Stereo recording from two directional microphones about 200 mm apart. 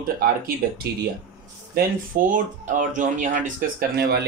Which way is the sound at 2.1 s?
40° right (ahead or behind).